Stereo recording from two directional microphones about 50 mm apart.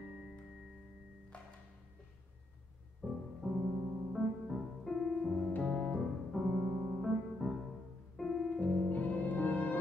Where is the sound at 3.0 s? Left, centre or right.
Left.